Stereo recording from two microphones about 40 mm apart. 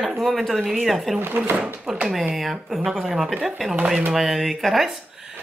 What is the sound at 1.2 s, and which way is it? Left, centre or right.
Speech, right.